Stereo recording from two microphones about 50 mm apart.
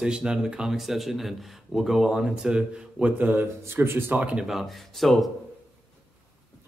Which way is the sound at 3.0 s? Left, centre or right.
Right.